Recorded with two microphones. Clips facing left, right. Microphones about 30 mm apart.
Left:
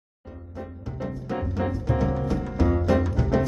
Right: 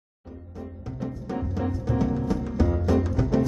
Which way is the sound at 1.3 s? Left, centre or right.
Left.